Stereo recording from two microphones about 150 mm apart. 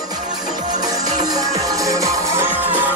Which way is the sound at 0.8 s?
25° right (ahead or behind).